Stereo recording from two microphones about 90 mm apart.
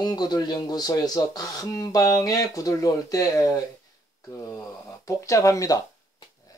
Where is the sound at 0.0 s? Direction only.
50° left (ahead or behind).